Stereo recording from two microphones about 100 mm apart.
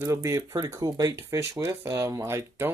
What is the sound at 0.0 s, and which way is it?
Speech, 30° right (ahead or behind).